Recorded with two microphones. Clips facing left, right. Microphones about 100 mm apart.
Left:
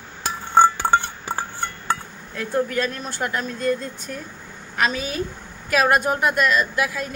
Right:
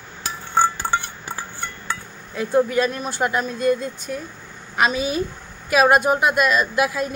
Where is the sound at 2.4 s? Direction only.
15° right (ahead or behind).